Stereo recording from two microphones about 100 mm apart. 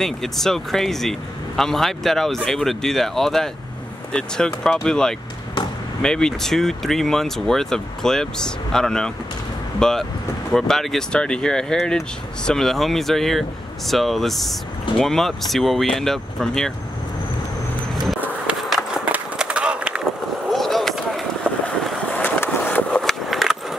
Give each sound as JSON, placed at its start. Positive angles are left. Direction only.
{"t": 0.0, "sound": "speech", "side_deg": 5}
{"t": 19.1, "sound": "skateboard", "side_deg": -10}
{"t": 20.4, "sound": "skateboard", "side_deg": 0}
{"t": 22.1, "sound": "skateboard", "side_deg": 15}
{"t": 23.0, "sound": "a sound", "side_deg": 0}